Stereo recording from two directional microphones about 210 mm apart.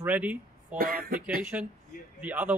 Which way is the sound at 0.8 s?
45° right (ahead or behind).